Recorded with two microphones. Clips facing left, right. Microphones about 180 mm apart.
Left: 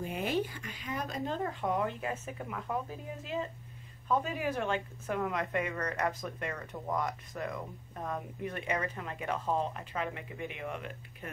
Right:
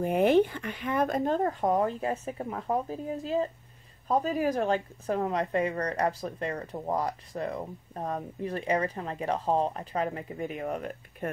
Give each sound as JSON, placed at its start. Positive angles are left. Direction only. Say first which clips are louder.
{"t": 0.0, "sound": "a woman's voice", "louder": "right 11 dB", "side_deg": -55}